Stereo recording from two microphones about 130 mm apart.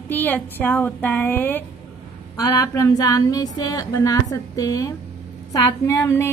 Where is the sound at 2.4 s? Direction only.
25° left (ahead or behind).